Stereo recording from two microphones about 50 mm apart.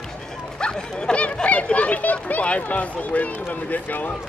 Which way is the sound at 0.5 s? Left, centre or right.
Centre.